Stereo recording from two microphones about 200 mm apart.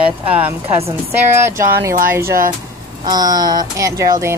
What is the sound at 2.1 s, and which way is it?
Speech, 10° right (ahead or behind).